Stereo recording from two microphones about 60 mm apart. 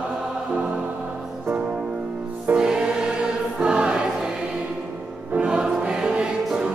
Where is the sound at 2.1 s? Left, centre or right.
Right.